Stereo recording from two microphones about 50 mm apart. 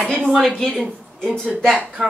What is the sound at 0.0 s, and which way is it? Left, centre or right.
Speech, centre.